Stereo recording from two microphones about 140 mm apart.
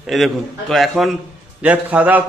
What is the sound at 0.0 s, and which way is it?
A man's voice, centre (ahead or behind).